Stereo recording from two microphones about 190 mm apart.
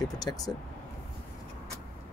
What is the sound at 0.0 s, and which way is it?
Speech, 20° left (ahead or behind).